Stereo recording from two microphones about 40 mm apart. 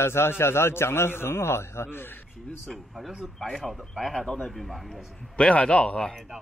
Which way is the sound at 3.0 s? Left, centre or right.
Centre.